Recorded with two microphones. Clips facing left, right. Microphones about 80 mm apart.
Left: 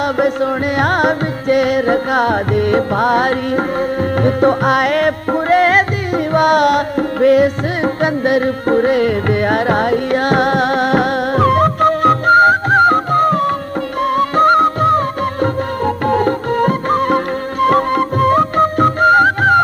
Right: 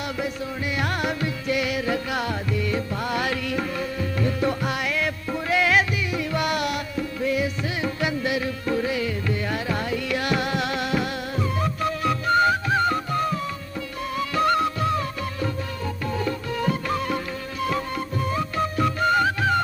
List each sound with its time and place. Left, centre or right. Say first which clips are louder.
0.2 s music: left 15 dB; left
14.1 s music of bollywood: left 10 dB; left